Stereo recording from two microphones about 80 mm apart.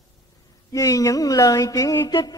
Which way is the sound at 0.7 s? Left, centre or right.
Left.